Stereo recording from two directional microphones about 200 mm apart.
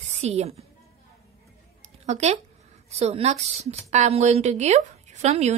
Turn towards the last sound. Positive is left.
turn(degrees=-35)  # may be behind; listen again after turning